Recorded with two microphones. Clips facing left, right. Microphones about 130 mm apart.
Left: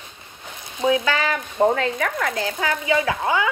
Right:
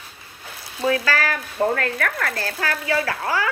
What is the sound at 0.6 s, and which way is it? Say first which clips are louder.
A woman's voice: left 2 dB; 20° left (ahead or behind).